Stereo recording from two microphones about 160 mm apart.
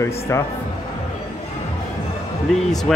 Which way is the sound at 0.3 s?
15° left (ahead or behind).